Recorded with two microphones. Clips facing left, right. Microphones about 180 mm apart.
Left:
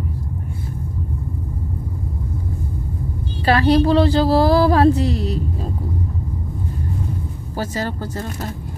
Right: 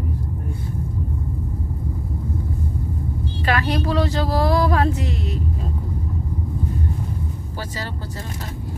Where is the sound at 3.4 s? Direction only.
35° left (ahead or behind).